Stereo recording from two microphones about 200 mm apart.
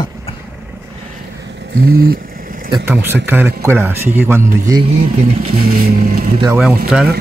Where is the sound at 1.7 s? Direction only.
50° right (ahead or behind).